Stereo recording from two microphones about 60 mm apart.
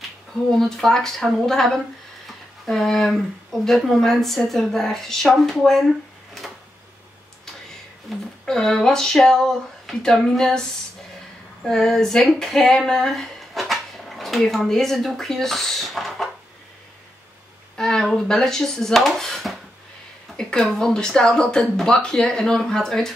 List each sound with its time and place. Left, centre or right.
0.0 s speech: centre
8.1 s speech: centre
11.6 s speech: centre
17.7 s speech: centre
20.3 s speech: centre